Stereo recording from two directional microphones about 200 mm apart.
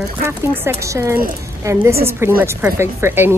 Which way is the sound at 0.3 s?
15° right (ahead or behind).